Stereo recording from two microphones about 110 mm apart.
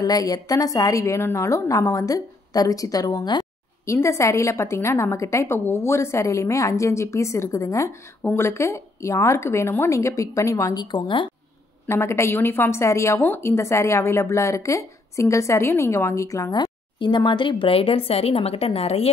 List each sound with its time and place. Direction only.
0.0 s a woman's voice: 35° left (ahead or behind)
8.2 s speech: 15° left (ahead or behind)
8.5 s a woman's voice: 25° left (ahead or behind)
10.8 s a woman's voice: 45° left (ahead or behind)
11.9 s a woman's voice: 25° left (ahead or behind)
16.5 s speech: 40° left (ahead or behind); by 19.0 s 65° left (ahead or behind)